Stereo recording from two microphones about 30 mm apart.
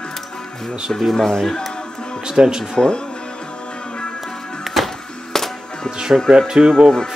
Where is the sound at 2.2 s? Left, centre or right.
Right.